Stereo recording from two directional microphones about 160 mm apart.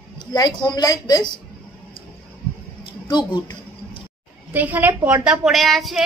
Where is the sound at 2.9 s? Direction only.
30° left (ahead or behind).